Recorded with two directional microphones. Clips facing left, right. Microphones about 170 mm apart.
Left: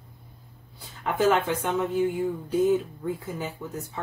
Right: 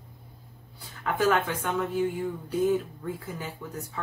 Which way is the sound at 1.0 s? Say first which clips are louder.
Left 2 dB; 20° left (ahead or behind).